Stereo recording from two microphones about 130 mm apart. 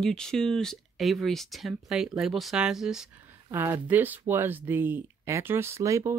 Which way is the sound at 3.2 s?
15° right (ahead or behind).